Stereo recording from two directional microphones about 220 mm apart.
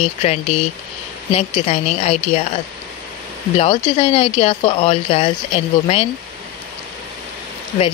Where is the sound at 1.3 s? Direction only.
30° left (ahead or behind).